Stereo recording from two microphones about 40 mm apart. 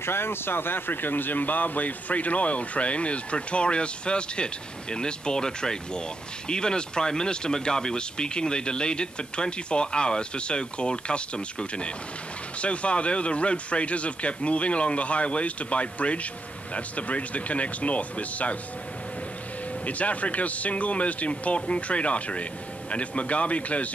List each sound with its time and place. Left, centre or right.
0.0 s speech: left
19.8 s speech: left